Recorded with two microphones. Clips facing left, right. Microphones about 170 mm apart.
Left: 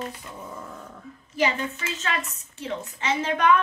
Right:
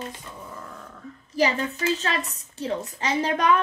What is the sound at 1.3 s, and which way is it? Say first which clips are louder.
A woman's voice: right 2 dB; 35° right (ahead or behind).